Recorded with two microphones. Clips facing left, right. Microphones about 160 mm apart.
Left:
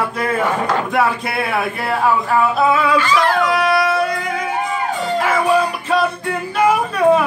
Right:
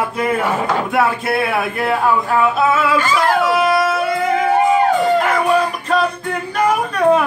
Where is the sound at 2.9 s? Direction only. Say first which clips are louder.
Even; 45° right (ahead or behind).